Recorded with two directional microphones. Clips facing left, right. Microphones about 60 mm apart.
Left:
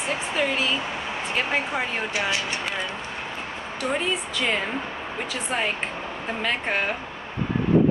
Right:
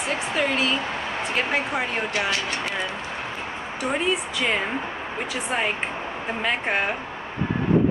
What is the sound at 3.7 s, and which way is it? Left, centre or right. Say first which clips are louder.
Speech: right 2 dB; centre.